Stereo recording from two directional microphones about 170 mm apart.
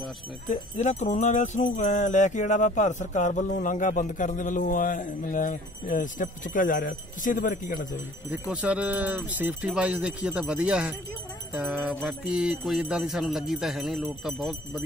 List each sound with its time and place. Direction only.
0.5 s jingle bell: 45° left (ahead or behind)
8.3 s speech: 5° right (ahead or behind)
12.1 s speech: 5° right (ahead or behind)